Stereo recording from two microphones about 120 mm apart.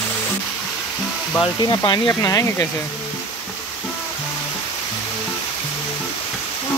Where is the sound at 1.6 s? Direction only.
40° left (ahead or behind).